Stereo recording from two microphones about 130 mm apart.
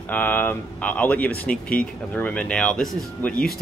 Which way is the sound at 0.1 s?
15° left (ahead or behind).